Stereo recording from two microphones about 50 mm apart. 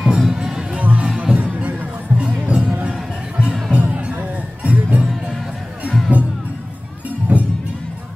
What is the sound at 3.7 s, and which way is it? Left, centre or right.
Music, right.